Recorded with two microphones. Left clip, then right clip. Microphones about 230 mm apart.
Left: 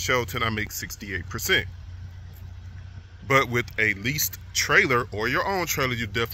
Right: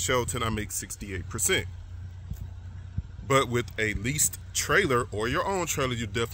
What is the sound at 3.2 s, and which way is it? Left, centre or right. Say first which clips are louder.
Speech: left 3 dB; centre.